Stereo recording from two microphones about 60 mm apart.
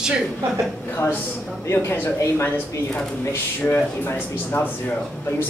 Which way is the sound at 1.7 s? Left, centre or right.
Left.